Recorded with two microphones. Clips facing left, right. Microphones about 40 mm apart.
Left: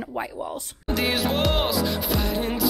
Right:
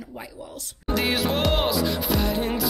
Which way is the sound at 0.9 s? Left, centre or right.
Centre.